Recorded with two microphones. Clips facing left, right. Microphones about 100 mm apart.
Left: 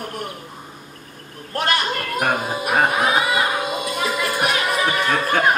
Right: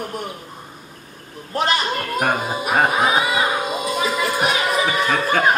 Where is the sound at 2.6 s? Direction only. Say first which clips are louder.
Right 1 dB; centre (ahead or behind).